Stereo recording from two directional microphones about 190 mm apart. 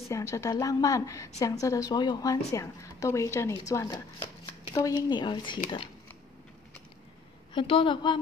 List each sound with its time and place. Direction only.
0.1 s a woman's voice: 15° left (ahead or behind)
7.5 s speech: 25° left (ahead or behind)